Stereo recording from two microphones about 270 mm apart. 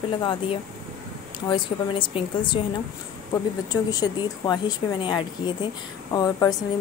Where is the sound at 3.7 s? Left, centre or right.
Centre.